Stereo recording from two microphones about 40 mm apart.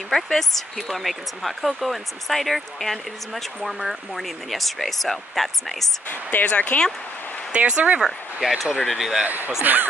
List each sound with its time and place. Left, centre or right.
0.1 s speech: centre
6.4 s speech: left
7.5 s speech: right
8.0 s speech: centre
9.6 s speech: right